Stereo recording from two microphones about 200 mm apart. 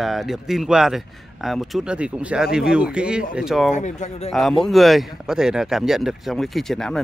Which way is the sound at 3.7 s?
35° left (ahead or behind).